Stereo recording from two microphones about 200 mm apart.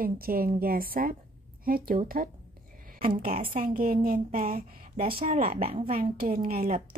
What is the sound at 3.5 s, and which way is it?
A woman's voice, 45° right (ahead or behind).